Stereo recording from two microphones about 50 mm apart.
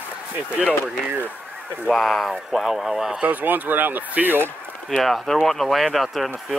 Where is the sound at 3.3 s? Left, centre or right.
Right.